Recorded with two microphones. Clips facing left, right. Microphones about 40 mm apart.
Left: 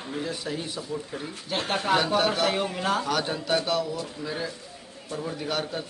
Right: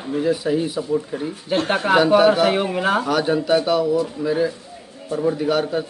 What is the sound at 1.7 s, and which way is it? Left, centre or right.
Speech, right.